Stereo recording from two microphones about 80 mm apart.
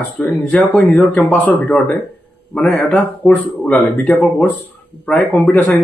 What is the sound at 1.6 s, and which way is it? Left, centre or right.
Speech, centre.